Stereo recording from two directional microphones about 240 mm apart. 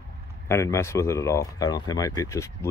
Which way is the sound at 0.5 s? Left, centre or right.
Centre.